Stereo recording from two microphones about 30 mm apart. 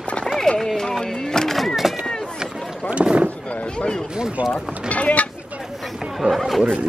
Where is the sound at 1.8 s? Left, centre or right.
Centre.